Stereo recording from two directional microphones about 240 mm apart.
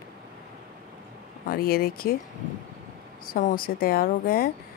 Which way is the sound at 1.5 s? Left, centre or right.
Left.